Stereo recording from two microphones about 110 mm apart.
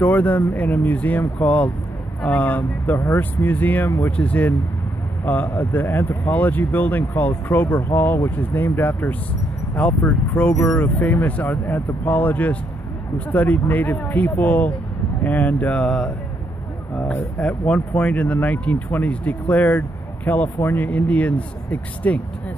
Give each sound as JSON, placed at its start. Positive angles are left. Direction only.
{"t": 0.0, "sound": "speech", "side_deg": 15}